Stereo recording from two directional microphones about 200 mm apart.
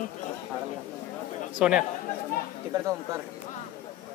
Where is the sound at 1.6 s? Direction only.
5° right (ahead or behind).